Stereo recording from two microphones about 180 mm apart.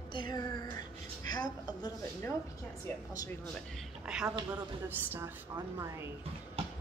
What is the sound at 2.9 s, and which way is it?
Speech, 15° left (ahead or behind).